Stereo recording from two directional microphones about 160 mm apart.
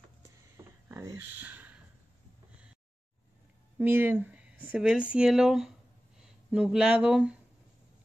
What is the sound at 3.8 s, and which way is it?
Speech, 10° right (ahead or behind).